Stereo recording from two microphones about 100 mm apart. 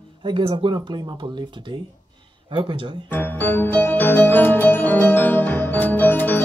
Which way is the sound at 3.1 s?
20° left (ahead or behind).